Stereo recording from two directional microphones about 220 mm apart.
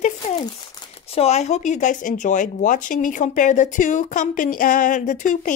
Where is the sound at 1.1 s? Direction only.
30° left (ahead or behind).